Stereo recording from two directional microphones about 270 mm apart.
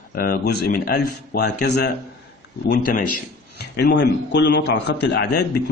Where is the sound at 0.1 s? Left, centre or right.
Left.